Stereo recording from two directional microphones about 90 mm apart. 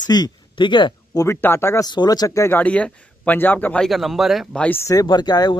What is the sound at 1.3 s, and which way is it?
Speech, 25° left (ahead or behind).